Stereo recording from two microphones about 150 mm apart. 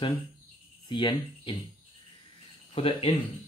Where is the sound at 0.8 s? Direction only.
30° left (ahead or behind).